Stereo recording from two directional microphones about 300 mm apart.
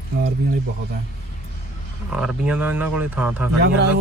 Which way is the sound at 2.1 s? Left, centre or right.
Centre.